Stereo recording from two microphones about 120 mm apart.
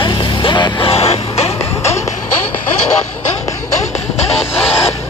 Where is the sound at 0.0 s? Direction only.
45° left (ahead or behind).